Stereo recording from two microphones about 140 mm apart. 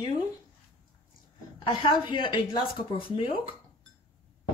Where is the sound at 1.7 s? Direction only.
35° left (ahead or behind).